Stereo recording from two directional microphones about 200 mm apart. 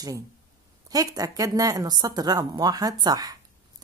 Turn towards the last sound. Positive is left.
turn(degrees=-20)  # may be behind; listen again after turning